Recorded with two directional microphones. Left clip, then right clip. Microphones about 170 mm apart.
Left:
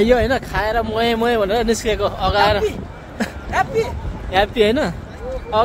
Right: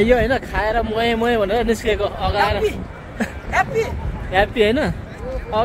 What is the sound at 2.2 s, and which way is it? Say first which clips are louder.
Speech: left 4 dB; 20° left (ahead or behind).